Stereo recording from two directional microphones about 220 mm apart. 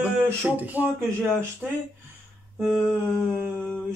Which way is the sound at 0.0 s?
5° right (ahead or behind).